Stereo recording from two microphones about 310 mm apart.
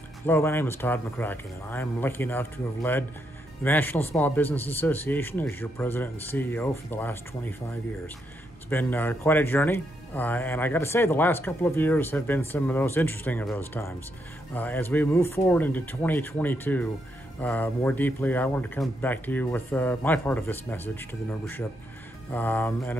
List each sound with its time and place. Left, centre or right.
0.3 s speech: centre
8.6 s a man's voice: centre